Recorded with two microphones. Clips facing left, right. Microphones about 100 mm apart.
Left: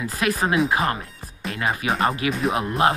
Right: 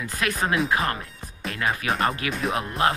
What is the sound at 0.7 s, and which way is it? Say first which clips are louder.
Speech: left 2 dB; 30° left (ahead or behind).